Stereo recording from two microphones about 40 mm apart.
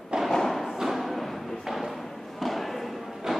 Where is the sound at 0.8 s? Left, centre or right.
Centre.